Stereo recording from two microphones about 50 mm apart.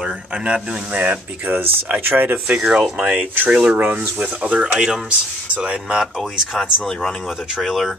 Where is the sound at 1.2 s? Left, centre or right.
Right.